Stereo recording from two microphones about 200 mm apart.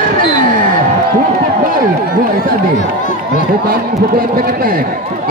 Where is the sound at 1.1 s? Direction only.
45° right (ahead or behind).